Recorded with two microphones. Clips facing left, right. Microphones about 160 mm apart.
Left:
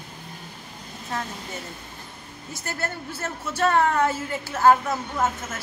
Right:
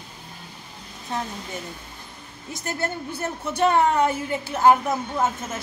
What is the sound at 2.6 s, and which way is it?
A woman's voice, 15° right (ahead or behind).